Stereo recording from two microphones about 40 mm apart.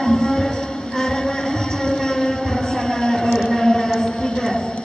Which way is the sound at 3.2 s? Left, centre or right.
Centre.